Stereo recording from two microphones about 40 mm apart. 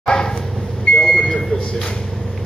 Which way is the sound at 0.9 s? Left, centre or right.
Left.